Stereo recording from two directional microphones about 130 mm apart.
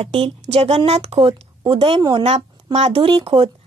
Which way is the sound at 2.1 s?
55° right (ahead or behind).